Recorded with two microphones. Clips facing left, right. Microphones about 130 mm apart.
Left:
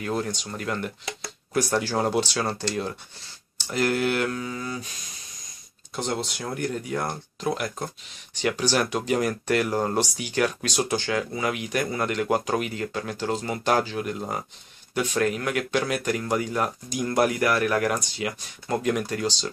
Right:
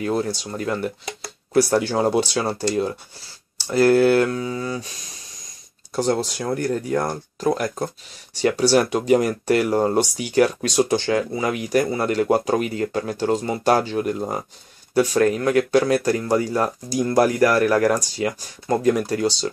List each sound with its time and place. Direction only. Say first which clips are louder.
0.0 s speech: right 5 dB; 35° right (ahead or behind)
5.9 s speech: right 8 dB; 40° right (ahead or behind)